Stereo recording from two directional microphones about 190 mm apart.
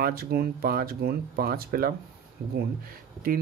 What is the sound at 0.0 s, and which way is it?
Speech, 55° right (ahead or behind).